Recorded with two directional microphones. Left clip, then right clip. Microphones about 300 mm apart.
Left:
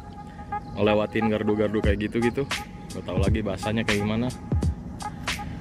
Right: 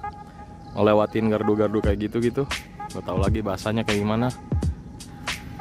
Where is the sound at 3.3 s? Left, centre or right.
Centre.